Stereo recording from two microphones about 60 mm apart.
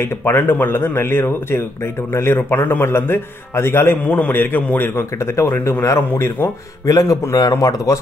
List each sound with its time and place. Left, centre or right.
0.2 s speech: left
4.0 s speech: left
5.6 s speech: left
6.9 s a man's voice: left